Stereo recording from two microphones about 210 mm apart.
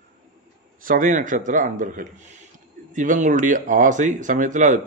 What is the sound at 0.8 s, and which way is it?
Speech, 40° right (ahead or behind).